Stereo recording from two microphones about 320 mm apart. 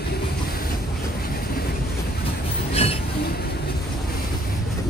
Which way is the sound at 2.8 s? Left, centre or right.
Centre.